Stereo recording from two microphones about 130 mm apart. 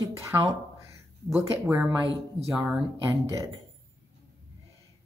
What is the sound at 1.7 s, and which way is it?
Speech, 5° right (ahead or behind).